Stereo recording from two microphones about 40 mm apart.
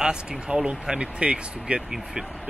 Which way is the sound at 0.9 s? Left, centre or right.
Right.